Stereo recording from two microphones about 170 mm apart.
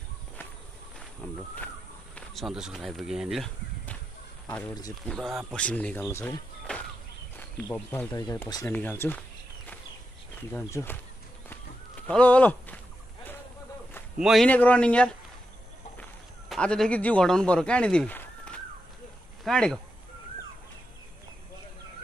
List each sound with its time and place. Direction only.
2.1 s a man's voice: centre (ahead or behind)
6.7 s a sound: 5° left (ahead or behind)
7.6 s a man's voice: 15° left (ahead or behind)
8.1 s speech: 25° left (ahead or behind)
8.6 s a man's voice: 10° left (ahead or behind)
10.5 s a man's voice: 15° left (ahead or behind)
12.1 s speech: 10° left (ahead or behind)
14.2 s a man's voice: centre (ahead or behind)